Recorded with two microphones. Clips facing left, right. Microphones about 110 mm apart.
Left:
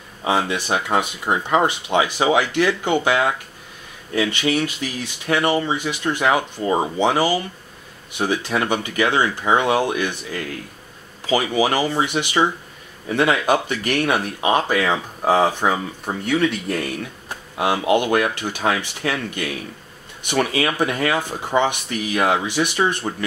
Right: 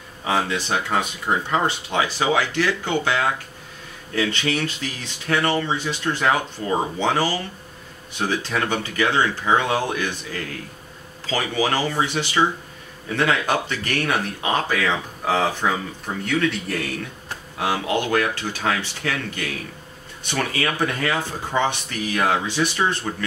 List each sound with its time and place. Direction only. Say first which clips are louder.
0.2 s speech: left 2 dB; 15° left (ahead or behind)